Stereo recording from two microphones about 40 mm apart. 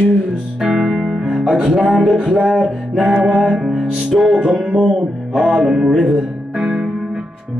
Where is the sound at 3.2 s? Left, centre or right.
Centre.